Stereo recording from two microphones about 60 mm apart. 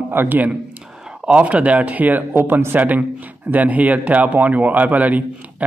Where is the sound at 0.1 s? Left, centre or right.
Right.